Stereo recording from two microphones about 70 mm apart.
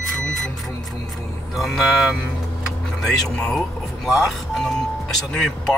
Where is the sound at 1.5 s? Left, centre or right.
Centre.